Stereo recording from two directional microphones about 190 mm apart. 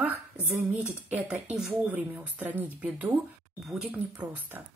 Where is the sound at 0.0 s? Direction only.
10° right (ahead or behind).